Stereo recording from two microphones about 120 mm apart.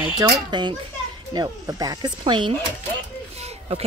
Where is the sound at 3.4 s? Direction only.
60° right (ahead or behind).